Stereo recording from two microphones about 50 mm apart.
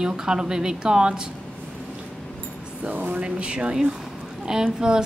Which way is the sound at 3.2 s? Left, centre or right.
Right.